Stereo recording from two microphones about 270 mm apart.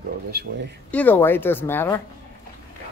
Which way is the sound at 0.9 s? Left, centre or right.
Centre.